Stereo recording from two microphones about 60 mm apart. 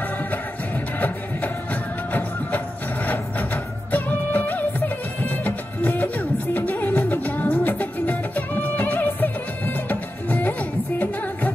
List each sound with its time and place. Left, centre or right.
0.9 s music: left